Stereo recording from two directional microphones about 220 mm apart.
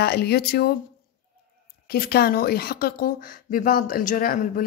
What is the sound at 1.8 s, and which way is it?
Speech, 45° left (ahead or behind).